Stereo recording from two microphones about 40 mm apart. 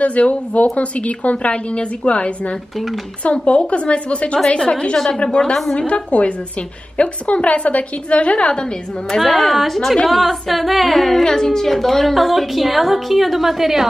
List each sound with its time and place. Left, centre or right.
0.0 s a woman's voice: left
4.6 s a woman's voice: centre
6.0 s a woman's voice: left
9.1 s a woman's voice: centre